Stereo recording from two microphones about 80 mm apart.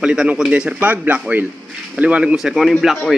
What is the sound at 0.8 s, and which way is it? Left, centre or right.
A man's voice, right.